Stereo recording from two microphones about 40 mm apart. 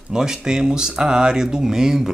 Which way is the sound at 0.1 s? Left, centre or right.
Centre.